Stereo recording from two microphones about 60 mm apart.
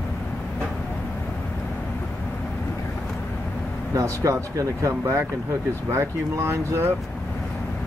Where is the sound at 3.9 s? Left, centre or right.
Right.